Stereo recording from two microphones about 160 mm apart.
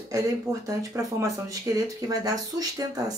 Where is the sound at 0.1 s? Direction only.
20° right (ahead or behind).